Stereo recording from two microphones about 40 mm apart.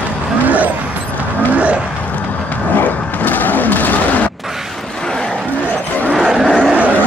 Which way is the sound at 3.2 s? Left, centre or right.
Left.